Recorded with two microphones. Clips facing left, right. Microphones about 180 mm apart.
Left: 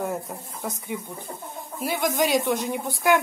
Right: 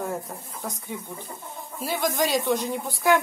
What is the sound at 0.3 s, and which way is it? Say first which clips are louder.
Speech: left 2 dB; 5° left (ahead or behind).